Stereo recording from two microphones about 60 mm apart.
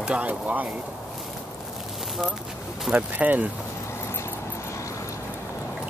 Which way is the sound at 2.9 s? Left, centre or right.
Right.